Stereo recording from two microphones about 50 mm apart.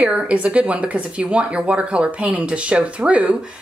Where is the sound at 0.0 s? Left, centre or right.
Right.